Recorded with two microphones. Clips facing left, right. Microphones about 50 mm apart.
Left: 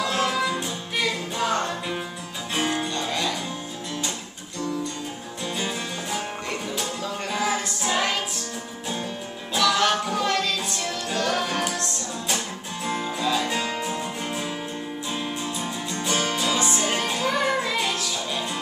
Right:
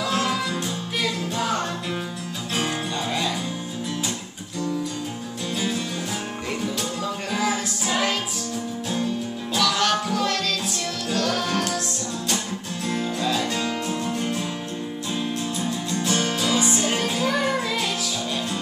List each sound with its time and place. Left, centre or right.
0.0 s music: centre
7.3 s music: centre
9.6 s music: centre
15.6 s music: centre